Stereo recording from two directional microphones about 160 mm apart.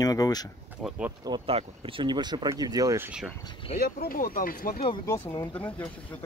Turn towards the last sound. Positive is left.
turn(degrees=10)  # may be behind; listen again after turning